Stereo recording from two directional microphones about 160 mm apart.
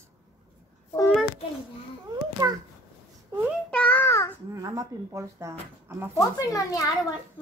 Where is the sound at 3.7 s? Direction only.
10° left (ahead or behind).